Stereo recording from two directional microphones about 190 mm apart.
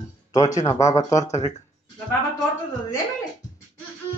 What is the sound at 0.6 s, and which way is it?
Speech, 15° left (ahead or behind).